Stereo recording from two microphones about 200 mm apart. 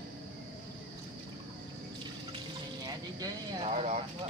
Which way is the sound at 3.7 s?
35° right (ahead or behind).